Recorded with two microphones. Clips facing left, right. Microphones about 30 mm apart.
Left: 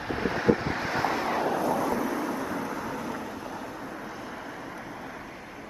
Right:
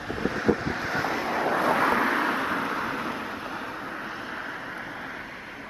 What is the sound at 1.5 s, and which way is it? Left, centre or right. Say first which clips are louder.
Vehicle: right 4 dB; right.